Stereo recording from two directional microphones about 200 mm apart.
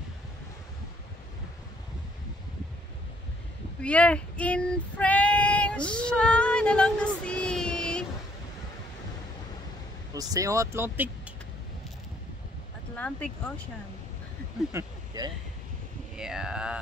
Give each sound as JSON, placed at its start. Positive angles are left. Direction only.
{"t": 3.8, "sound": "child singing", "side_deg": 5}
{"t": 10.1, "sound": "speech", "side_deg": -15}
{"t": 12.9, "sound": "speech", "side_deg": 5}
{"t": 14.7, "sound": "vehicle", "side_deg": -15}
{"t": 16.2, "sound": "speech", "side_deg": -5}